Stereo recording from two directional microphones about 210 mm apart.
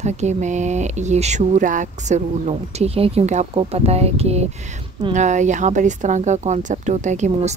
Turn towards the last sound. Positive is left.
turn(degrees=-35)  # may be behind; listen again after turning